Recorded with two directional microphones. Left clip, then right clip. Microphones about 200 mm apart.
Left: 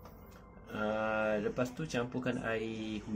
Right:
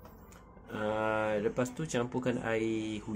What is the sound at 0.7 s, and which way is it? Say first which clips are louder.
Speech: right 2 dB; 20° right (ahead or behind).